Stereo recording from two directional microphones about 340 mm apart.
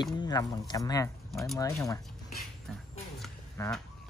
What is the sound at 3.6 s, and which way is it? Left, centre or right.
Speech, centre.